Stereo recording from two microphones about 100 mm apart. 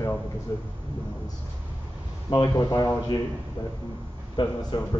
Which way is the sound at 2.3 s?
40° left (ahead or behind).